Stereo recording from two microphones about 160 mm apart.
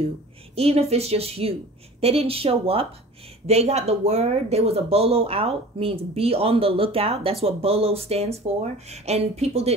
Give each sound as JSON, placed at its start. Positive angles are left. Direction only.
{"t": 0.6, "sound": "speech", "side_deg": -40}